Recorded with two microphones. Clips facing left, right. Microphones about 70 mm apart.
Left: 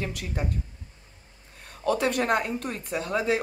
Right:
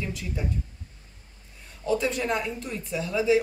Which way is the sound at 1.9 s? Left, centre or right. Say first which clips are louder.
Left 2 dB; left.